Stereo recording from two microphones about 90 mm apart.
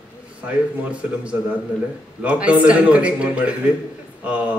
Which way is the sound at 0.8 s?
15° right (ahead or behind).